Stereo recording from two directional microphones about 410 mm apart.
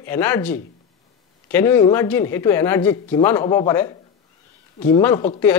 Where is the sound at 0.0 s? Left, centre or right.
Centre.